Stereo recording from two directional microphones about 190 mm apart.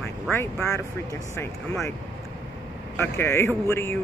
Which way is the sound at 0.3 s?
10° left (ahead or behind).